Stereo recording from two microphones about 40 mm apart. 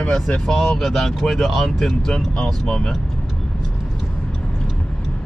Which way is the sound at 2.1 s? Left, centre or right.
Centre.